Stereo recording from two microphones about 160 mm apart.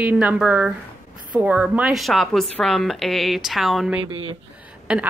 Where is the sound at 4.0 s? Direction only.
35° right (ahead or behind).